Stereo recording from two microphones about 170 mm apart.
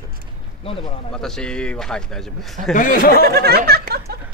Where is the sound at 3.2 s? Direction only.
70° right (ahead or behind).